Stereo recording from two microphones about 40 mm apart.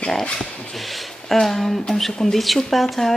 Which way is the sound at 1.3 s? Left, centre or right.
Centre.